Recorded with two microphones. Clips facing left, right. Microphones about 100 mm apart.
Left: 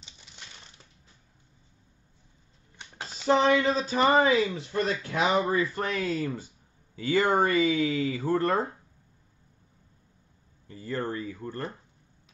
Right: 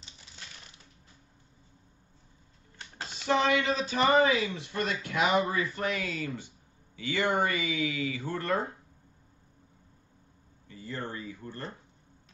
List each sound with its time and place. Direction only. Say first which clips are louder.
3.3 s a man's voice: left 4 dB; 30° left (ahead or behind)
10.7 s speech: left 6 dB; 40° left (ahead or behind)